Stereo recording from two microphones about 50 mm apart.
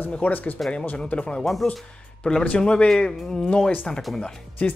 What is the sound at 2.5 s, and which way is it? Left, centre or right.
Speech, left.